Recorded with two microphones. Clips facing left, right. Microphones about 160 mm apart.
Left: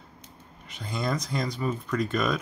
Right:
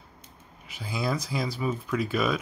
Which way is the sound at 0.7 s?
5° right (ahead or behind).